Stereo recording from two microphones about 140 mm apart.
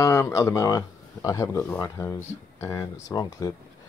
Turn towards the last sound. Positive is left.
turn(degrees=25)  # may be behind; listen again after turning